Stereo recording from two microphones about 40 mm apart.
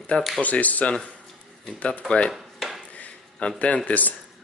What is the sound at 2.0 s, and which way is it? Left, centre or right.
Speech, left.